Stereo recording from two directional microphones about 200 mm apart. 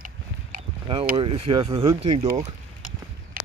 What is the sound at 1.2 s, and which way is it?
Speech, 25° right (ahead or behind).